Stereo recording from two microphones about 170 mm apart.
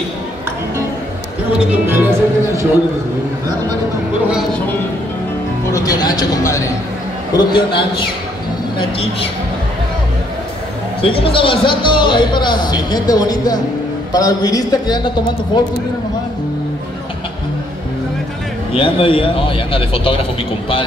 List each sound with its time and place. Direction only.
1.6 s speech: 10° right (ahead or behind)
5.7 s speech: 20° left (ahead or behind)
11.0 s speech: 30° left (ahead or behind)
18.7 s speech: 35° left (ahead or behind)